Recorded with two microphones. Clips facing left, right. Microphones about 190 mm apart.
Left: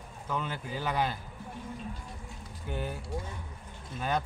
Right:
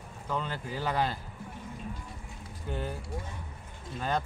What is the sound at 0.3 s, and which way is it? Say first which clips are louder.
Speech: right 1 dB; 5° left (ahead or behind).